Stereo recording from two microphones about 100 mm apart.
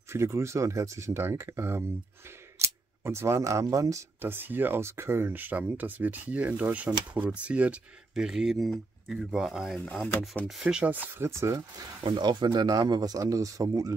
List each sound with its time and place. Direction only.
0.1 s speech: 25° right (ahead or behind)
4.2 s speech: 20° right (ahead or behind)
12.0 s speech: 50° right (ahead or behind)